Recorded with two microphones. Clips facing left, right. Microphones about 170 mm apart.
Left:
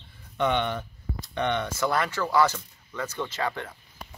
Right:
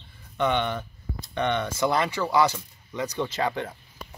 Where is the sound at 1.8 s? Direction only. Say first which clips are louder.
Right 3 dB; 20° right (ahead or behind).